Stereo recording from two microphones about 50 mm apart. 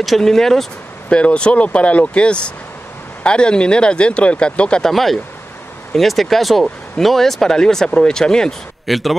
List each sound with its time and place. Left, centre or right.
0.0 s speech: centre
1.1 s speech: left
4.8 s speech: centre
8.8 s speech: centre